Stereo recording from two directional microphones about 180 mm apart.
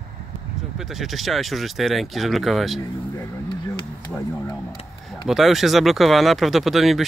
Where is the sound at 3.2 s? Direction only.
20° left (ahead or behind).